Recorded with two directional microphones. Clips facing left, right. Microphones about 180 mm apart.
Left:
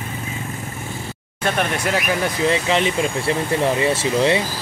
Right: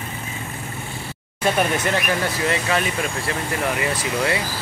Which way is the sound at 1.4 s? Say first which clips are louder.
Right 1 dB; centre (ahead or behind).